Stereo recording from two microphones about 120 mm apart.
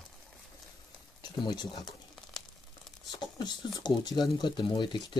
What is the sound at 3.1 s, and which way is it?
Speech, 35° left (ahead or behind).